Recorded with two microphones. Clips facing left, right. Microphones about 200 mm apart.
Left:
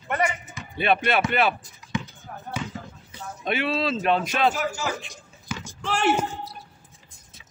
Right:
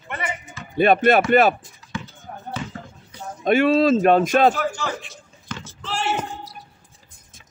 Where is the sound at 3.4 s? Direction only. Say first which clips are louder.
Right 9 dB; 45° right (ahead or behind).